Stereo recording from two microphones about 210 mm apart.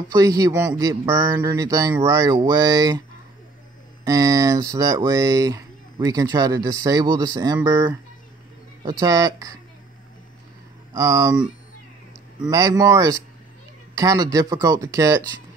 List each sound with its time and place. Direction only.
0.1 s speech: 15° right (ahead or behind)
4.0 s speech: 15° right (ahead or behind)
8.8 s speech: 15° right (ahead or behind)
10.9 s speech: 15° right (ahead or behind)
12.4 s speech: 15° right (ahead or behind)